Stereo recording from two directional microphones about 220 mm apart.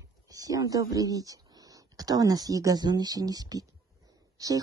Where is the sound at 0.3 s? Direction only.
15° right (ahead or behind).